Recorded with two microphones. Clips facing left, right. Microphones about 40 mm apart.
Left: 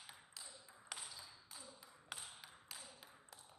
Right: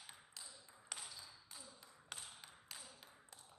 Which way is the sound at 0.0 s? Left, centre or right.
Centre.